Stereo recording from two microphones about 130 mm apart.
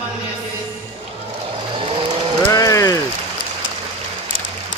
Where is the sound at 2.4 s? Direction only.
25° left (ahead or behind).